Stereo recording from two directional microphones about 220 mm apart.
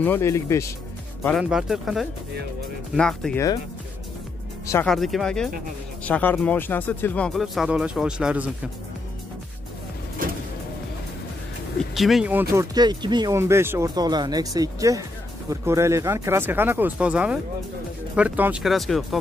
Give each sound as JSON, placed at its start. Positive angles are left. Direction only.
{"t": 0.0, "sound": "speech", "side_deg": 10}
{"t": 1.4, "sound": "speech", "side_deg": -5}
{"t": 4.8, "sound": "speech", "side_deg": 0}
{"t": 10.2, "sound": "a sound", "side_deg": -40}
{"t": 11.9, "sound": "speech", "side_deg": 0}
{"t": 12.5, "sound": "speech", "side_deg": -20}